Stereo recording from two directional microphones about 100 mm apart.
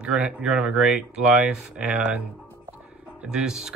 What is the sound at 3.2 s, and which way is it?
Speech, 5° right (ahead or behind).